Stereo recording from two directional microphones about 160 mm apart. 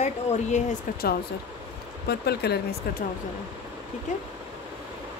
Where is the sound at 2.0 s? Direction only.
85° left.